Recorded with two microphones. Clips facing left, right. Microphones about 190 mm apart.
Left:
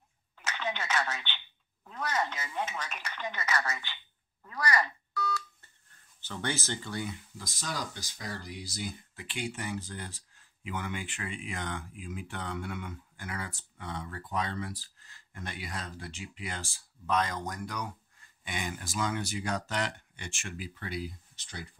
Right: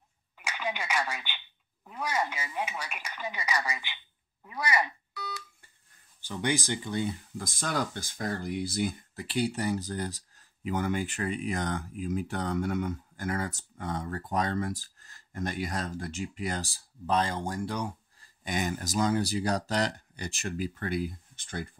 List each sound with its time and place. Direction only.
0.4 s a sound: 10° right (ahead or behind)
1.9 s speech: 10° right (ahead or behind)
7.3 s speech: 50° right (ahead or behind)
9.1 s speech: 40° right (ahead or behind)